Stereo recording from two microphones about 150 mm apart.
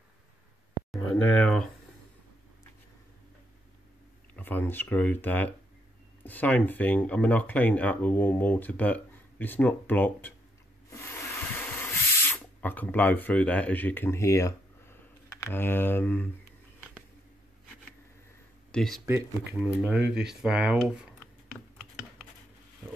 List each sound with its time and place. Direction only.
0.9 s speech: 10° left (ahead or behind)
4.4 s speech: 15° left (ahead or behind)
10.9 s a sound: 15° left (ahead or behind)
12.5 s speech: 10° left (ahead or behind)
18.7 s speech: 5° left (ahead or behind)
19.0 s speech: 15° right (ahead or behind)